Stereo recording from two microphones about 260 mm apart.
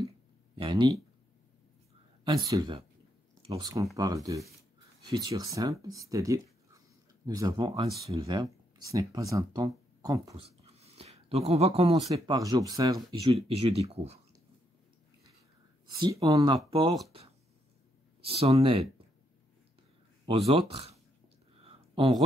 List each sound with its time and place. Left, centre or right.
0.6 s speech: centre
2.2 s speech: centre
16.1 s speech: centre
18.2 s speech: right
20.2 s speech: right
21.6 s a sound: centre